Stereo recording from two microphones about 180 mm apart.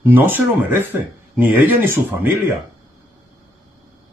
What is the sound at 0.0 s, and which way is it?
Speech, 10° right (ahead or behind).